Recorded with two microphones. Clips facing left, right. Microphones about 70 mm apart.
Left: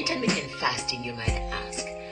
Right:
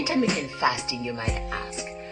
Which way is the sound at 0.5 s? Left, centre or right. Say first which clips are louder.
Right 4 dB; right.